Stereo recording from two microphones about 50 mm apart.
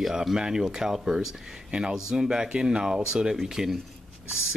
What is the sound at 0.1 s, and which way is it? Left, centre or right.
Speech, centre.